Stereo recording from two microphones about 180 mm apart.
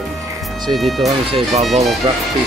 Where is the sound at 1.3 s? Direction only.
30° right (ahead or behind).